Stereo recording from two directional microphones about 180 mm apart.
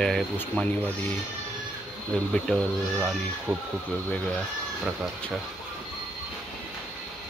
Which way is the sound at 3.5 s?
15° right (ahead or behind).